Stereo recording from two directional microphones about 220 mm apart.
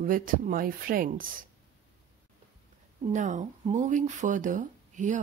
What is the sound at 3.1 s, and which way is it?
Speech, 35° right (ahead or behind).